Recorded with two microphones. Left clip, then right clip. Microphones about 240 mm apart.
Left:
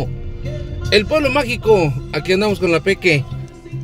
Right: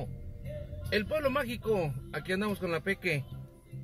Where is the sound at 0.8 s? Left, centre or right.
Centre.